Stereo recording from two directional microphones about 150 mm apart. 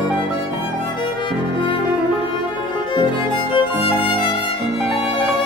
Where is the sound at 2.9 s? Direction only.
35° left (ahead or behind).